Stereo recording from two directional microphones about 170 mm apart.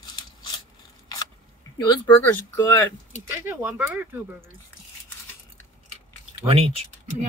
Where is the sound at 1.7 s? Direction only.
25° left (ahead or behind).